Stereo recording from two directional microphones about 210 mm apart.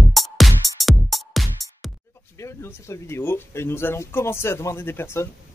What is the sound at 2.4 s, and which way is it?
Speech, 15° left (ahead or behind).